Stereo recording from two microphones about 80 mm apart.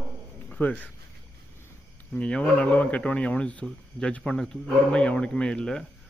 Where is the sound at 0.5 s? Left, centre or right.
Centre.